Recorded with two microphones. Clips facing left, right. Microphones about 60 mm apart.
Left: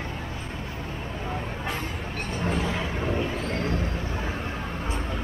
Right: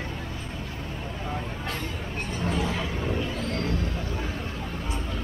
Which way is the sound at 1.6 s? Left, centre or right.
Centre.